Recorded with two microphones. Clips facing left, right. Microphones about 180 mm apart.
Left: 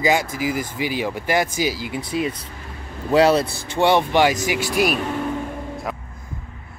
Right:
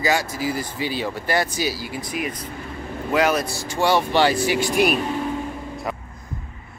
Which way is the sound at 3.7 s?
20° left (ahead or behind).